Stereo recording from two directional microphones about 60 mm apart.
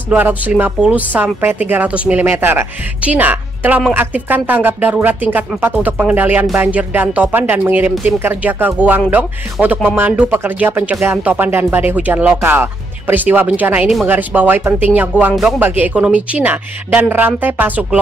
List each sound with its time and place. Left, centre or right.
0.1 s speech: right
2.2 s speech: right
3.0 s a woman's voice: right